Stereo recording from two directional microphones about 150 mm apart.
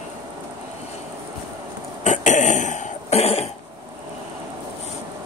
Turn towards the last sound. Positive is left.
turn(degrees=45)  # may be behind; listen again after turning